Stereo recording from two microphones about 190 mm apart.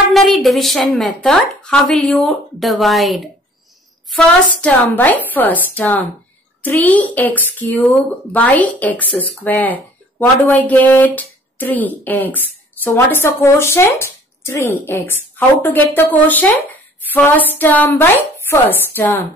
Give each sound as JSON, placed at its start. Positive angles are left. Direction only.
{"t": 0.1, "sound": "a woman's voice", "side_deg": 0}